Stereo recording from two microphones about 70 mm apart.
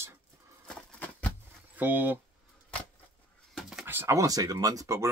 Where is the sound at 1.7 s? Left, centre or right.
Right.